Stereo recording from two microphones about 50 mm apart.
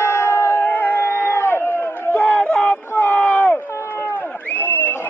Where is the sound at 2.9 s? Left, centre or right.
Left.